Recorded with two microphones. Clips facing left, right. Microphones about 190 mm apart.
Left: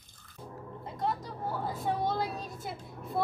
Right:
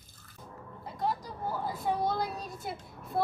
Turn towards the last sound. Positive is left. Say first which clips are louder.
# even
turn(degrees=0)  # may be behind; listen again after turning